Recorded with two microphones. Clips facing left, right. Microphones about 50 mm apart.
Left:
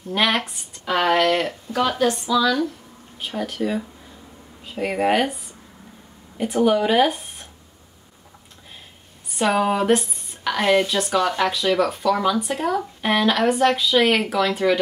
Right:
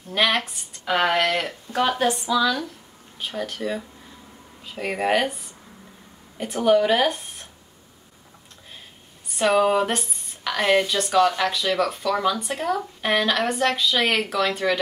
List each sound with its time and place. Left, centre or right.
0.1 s speech: centre
1.7 s speech: right
3.2 s speech: centre
9.4 s speech: centre